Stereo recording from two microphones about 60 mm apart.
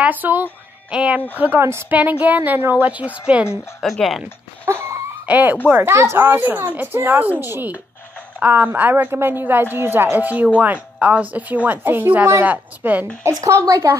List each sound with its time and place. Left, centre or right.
0.0 s speech: right
0.8 s a woman's voice: centre
1.6 s speech: right
1.9 s a woman's voice: right
3.8 s speech: centre
4.7 s a sound: right
5.2 s a woman's voice: right
5.9 s speech: right
6.2 s a woman's voice: right
8.4 s a woman's voice: right
13.5 s speech: right